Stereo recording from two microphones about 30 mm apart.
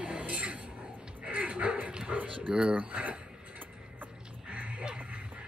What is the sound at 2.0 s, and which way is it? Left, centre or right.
Speech, right.